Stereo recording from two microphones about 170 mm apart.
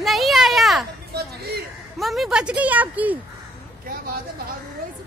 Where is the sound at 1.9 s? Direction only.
Centre (ahead or behind).